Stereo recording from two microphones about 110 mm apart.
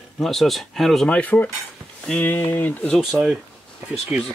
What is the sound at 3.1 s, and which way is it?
Speech, 10° right (ahead or behind).